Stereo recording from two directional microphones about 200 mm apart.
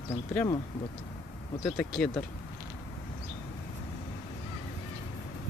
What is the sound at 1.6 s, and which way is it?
Speech, 5° left (ahead or behind).